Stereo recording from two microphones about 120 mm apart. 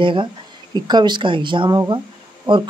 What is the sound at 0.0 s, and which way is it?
A woman's voice, 45° right (ahead or behind).